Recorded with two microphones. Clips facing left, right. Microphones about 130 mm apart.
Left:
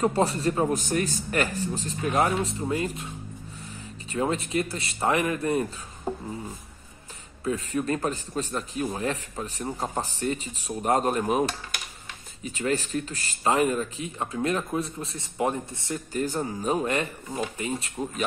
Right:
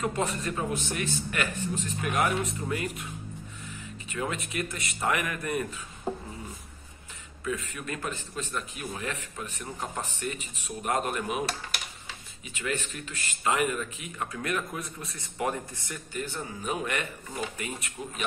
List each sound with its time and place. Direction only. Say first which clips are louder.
0.0 s a man's voice: left 6 dB; 35° left (ahead or behind)
4.1 s speech: left 7 dB; 30° left (ahead or behind)
7.4 s a man's voice: left 7 dB; 35° left (ahead or behind)
12.4 s a man's voice: left 6 dB; 35° left (ahead or behind)
16.1 s a man's voice: left 7 dB; 40° left (ahead or behind)